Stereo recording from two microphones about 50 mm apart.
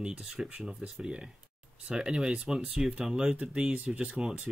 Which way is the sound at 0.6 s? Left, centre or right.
Centre.